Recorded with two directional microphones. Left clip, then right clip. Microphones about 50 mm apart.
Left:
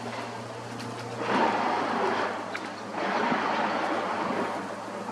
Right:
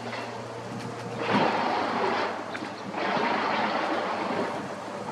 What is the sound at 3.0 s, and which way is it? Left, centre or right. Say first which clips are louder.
Vehicle: right 1 dB; right.